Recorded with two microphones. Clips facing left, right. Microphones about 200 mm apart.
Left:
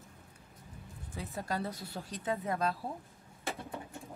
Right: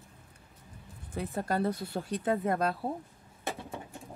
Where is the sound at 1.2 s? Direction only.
55° right (ahead or behind).